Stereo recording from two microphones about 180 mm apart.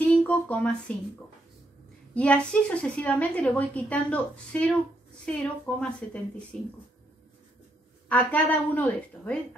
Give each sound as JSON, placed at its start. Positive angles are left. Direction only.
{"t": 0.1, "sound": "speech", "side_deg": 10}
{"t": 2.1, "sound": "a woman's voice", "side_deg": 10}
{"t": 8.1, "sound": "a woman's voice", "side_deg": 10}